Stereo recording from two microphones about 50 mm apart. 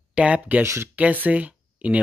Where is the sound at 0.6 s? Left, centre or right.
Right.